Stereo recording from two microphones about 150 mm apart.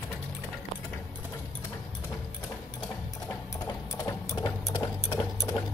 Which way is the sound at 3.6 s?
25° left (ahead or behind).